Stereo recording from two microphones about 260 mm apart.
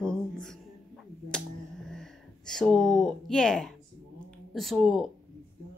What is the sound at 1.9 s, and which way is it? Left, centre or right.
Speech, centre.